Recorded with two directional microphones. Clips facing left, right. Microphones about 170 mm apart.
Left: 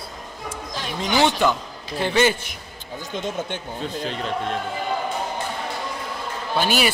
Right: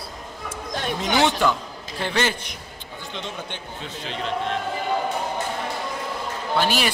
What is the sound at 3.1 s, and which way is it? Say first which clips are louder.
Speech: left 6 dB; 45° left (ahead or behind).